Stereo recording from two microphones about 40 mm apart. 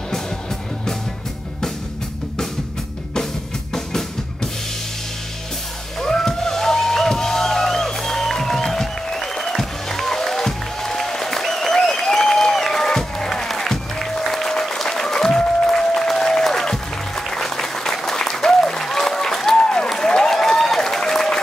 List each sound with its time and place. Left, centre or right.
3.7 s music: centre
5.9 s a sound: centre
15.7 s music: centre
17.3 s applause: centre